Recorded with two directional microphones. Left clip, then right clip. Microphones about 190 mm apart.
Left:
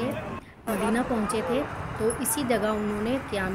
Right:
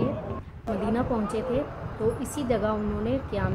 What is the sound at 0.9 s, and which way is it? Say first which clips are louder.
A woman's voice: right 1 dB; 15° left (ahead or behind).